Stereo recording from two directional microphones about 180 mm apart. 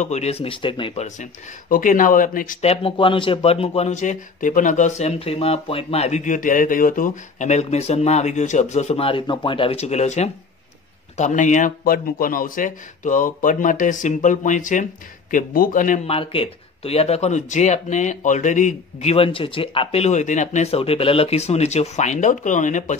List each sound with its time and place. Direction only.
0.0 s speech: 35° left (ahead or behind)
1.0 s speech: 45° left (ahead or behind)
2.6 s speech: 35° left (ahead or behind)
16.1 s speech: 30° left (ahead or behind)